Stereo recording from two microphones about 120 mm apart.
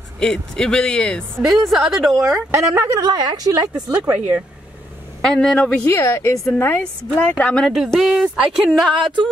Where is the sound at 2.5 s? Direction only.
25° right (ahead or behind).